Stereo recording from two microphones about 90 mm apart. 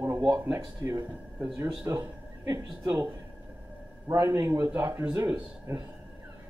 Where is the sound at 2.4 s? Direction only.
55° right (ahead or behind).